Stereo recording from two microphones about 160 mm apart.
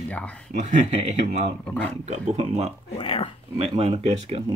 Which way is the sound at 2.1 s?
45° right (ahead or behind).